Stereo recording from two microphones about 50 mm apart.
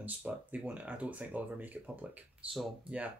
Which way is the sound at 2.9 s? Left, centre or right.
Right.